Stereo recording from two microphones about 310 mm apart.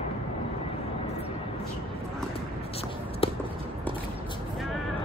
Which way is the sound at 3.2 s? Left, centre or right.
Centre.